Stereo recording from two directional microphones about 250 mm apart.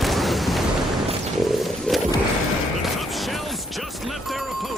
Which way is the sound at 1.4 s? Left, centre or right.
Centre.